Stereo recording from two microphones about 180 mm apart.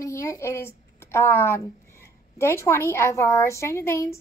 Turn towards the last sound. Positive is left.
turn(degrees=15)  # may be behind; listen again after turning